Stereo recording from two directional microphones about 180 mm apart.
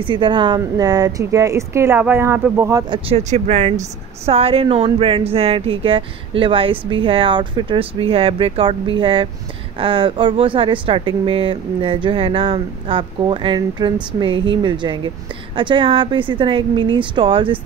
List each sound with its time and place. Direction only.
0.0 s speech: 25° right (ahead or behind)
2.9 s speech: 35° right (ahead or behind)